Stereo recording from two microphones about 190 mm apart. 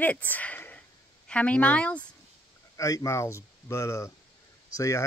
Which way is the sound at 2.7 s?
15° left (ahead or behind).